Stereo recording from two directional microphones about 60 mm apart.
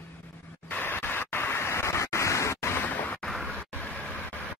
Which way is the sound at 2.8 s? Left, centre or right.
Left.